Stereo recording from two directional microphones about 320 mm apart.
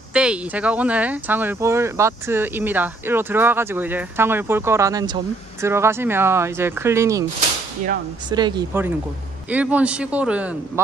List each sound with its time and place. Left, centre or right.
0.1 s speech: centre
7.3 s a sound: right
8.3 s speech: centre